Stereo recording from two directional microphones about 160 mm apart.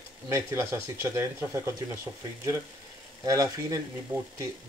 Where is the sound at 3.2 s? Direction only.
20° right (ahead or behind).